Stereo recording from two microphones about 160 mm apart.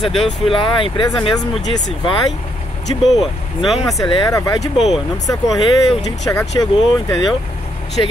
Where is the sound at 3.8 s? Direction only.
20° left (ahead or behind).